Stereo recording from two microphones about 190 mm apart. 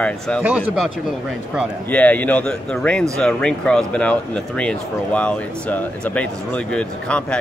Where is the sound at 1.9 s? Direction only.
10° left (ahead or behind).